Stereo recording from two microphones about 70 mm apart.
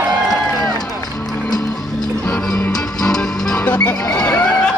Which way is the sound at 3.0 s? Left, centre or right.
Centre.